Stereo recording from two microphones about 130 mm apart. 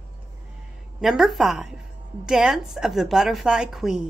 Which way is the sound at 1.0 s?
Centre (ahead or behind).